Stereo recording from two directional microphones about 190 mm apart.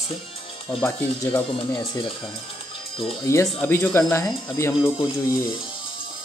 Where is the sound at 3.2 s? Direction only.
15° left (ahead or behind).